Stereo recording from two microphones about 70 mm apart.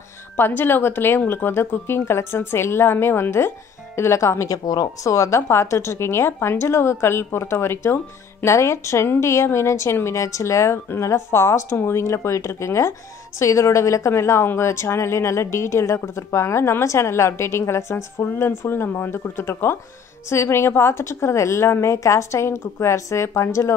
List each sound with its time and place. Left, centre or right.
0.4 s speech: left
4.6 s a woman's voice: left